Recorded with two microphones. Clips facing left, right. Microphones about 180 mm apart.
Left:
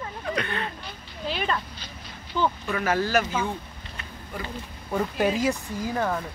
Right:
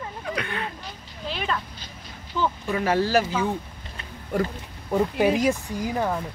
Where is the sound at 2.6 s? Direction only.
30° right (ahead or behind).